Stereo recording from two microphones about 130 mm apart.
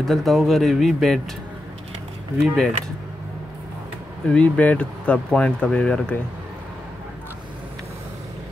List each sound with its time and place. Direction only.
0.0 s speech: centre (ahead or behind)
2.4 s speech: centre (ahead or behind)
4.3 s speech: 10° left (ahead or behind)